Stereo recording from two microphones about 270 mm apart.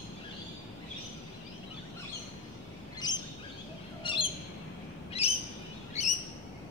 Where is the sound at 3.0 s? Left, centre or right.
Centre.